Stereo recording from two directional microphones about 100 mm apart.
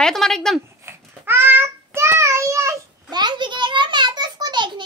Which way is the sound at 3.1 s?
50° right (ahead or behind).